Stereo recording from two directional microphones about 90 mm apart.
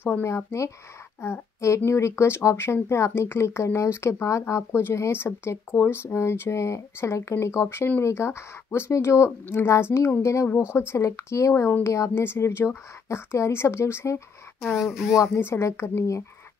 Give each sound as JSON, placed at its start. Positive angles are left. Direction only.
{"t": 0.0, "sound": "a woman's voice", "side_deg": 30}
{"t": 14.6, "sound": "speech", "side_deg": 0}
{"t": 15.3, "sound": "a woman's voice", "side_deg": 30}